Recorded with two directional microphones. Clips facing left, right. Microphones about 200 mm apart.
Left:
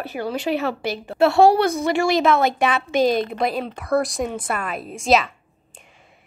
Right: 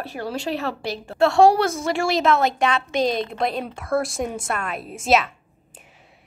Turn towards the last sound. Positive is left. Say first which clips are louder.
# left 1 dB
turn(degrees=0)  # may be behind; listen again after turning